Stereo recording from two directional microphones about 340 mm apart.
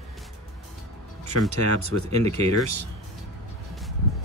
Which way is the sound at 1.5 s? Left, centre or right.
Right.